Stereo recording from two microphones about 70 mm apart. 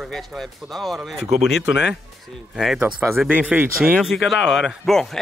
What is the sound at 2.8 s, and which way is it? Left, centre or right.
Speech, centre.